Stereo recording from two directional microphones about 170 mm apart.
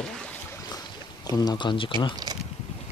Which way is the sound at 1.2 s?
20° left (ahead or behind).